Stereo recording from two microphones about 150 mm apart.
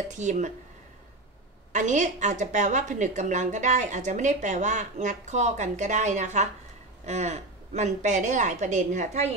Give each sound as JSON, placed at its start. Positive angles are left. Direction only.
{"t": 0.1, "sound": "a woman's voice", "side_deg": -55}
{"t": 1.7, "sound": "a woman's voice", "side_deg": -55}